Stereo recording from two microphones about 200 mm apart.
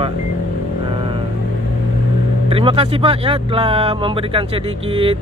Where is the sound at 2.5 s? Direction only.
25° right (ahead or behind).